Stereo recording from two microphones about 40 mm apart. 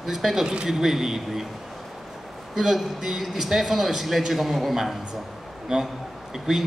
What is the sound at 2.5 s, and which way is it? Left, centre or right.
A man's voice, centre.